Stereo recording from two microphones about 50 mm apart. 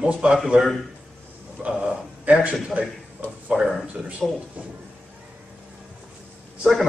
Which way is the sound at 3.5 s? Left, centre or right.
Centre.